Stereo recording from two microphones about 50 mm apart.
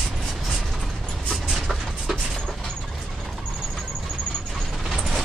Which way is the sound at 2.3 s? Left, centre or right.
Centre.